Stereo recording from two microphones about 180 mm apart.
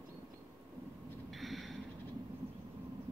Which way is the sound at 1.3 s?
Centre (ahead or behind).